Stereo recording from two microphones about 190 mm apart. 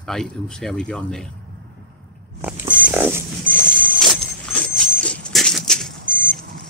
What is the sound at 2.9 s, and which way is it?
Dog, 10° right (ahead or behind).